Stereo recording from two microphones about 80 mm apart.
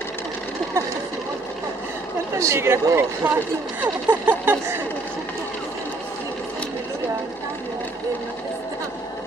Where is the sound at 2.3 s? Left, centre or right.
Right.